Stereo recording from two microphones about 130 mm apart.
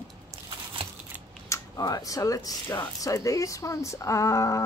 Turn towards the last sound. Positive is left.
turn(degrees=25)  # may be behind; listen again after turning